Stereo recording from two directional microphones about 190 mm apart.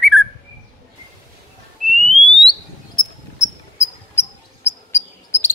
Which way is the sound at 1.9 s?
Centre (ahead or behind).